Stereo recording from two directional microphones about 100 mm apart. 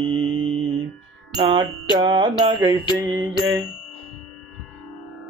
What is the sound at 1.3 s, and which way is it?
Music, 50° right (ahead or behind).